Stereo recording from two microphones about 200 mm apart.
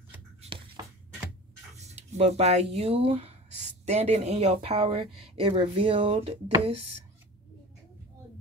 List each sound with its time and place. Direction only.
1.8 s speech: 35° right (ahead or behind)